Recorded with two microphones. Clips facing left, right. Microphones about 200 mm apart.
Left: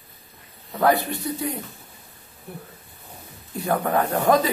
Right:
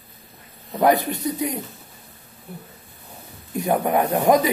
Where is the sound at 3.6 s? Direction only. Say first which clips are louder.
Right 2 dB; 20° right (ahead or behind).